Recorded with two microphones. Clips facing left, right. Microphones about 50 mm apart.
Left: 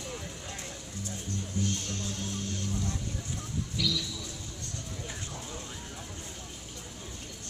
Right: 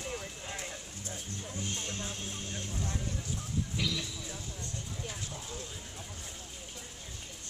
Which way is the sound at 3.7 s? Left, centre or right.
Right.